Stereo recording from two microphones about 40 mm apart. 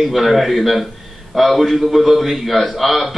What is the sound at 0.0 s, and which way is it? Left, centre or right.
Speech, centre.